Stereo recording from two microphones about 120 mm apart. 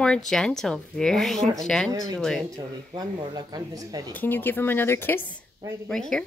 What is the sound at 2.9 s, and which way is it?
Speech, 35° right (ahead or behind).